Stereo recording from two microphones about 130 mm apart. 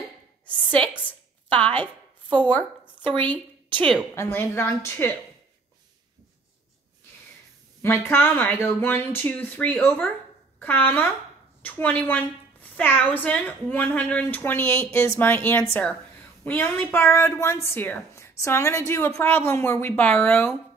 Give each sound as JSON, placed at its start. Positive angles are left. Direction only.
{"t": 2.2, "sound": "a woman's voice", "side_deg": -35}
{"t": 4.1, "sound": "a woman's voice", "side_deg": 20}
{"t": 7.8, "sound": "a woman's voice", "side_deg": 15}